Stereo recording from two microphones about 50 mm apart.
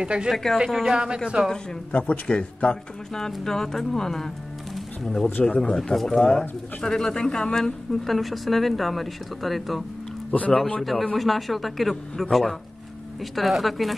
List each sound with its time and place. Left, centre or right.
0.0 s a woman's voice: centre
0.3 s a woman's voice: centre
0.9 s a woman's voice: centre
1.5 s speech: centre
3.1 s speech: centre
4.7 s pigeon: centre
5.4 s speech: centre
5.8 s a woman's voice: centre